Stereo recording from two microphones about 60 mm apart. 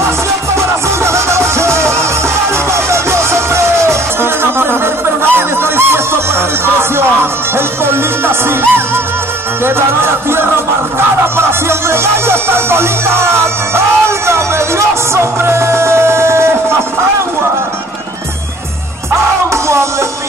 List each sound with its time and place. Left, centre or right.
0.6 s music: right
5.3 s honk: right
7.5 s music: right
11.9 s music: right
19.5 s music: right